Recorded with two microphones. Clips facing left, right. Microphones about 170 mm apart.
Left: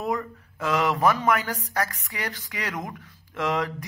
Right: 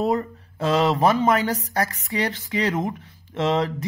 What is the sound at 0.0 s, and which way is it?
Speech, 30° right (ahead or behind).